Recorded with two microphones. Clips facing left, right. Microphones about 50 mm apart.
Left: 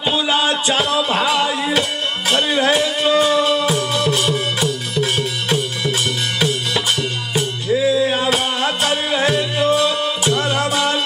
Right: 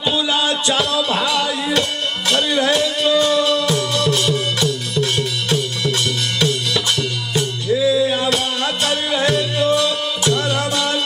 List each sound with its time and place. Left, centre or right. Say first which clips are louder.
0.0 s music: left 1 dB; centre
1.7 s speech: even; centre
2.7 s music: left 1 dB; centre
7.6 s music: even; left